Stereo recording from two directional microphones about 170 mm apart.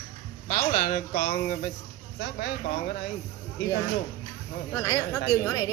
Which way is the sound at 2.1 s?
65° left (ahead or behind).